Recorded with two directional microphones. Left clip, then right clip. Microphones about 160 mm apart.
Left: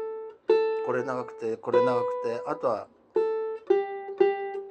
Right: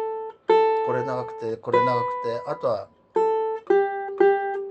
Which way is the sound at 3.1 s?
5° right (ahead or behind).